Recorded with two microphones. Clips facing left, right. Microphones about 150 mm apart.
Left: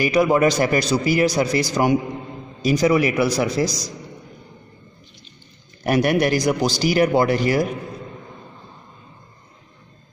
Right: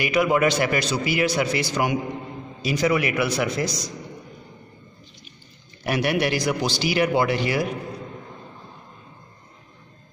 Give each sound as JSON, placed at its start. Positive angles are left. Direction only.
{"t": 0.0, "sound": "a man's voice", "side_deg": 35}
{"t": 5.9, "sound": "speech", "side_deg": 45}